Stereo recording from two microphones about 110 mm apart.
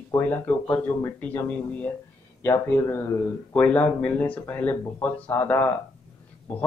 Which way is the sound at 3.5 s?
10° left (ahead or behind).